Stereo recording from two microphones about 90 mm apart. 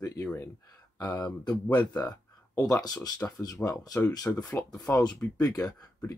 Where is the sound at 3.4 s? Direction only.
40° left (ahead or behind).